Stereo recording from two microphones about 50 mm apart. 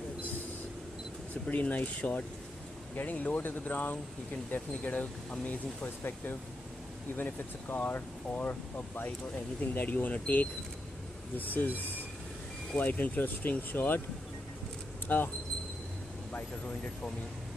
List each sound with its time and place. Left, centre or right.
1.5 s speech: left
7.6 s speech: left
12.7 s speech: left
15.0 s speech: left
16.3 s speech: left